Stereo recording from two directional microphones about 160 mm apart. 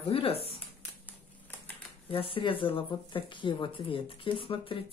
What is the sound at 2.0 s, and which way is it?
Speech, 35° left (ahead or behind).